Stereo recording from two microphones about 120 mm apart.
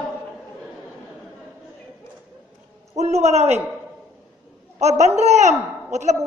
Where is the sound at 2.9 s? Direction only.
65° right (ahead or behind).